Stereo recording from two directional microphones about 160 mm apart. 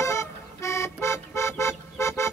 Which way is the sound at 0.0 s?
20° left (ahead or behind).